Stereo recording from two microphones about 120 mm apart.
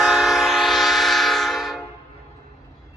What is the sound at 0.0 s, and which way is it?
Train, centre (ahead or behind).